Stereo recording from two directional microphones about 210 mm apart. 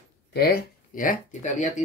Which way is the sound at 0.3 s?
50° left (ahead or behind).